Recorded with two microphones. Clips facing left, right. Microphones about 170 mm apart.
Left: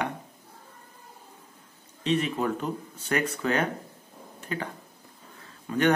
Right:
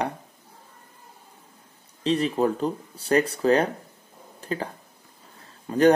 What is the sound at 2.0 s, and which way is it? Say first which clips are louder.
Speech: right 4 dB; 35° right (ahead or behind).